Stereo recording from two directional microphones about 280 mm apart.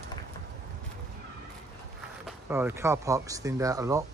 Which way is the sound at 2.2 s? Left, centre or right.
Centre.